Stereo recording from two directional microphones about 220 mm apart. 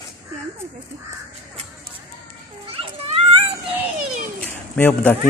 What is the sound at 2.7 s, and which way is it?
Children playing, 25° right (ahead or behind).